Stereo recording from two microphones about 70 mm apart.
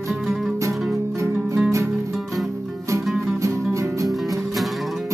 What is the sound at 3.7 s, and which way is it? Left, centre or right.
Music, right.